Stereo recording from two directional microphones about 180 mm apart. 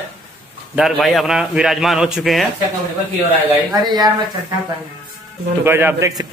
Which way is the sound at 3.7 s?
20° right (ahead or behind).